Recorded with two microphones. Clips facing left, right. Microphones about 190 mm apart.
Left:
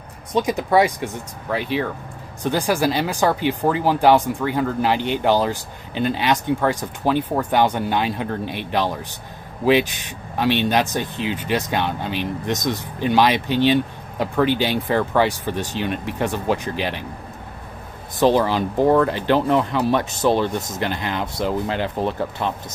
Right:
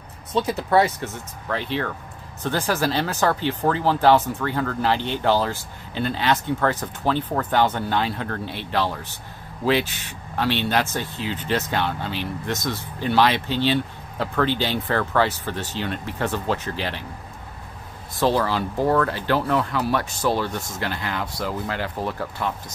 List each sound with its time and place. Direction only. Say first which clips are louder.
0.3 s speech: left 2 dB; 15° left (ahead or behind)
18.2 s speech: left 4 dB; 20° left (ahead or behind)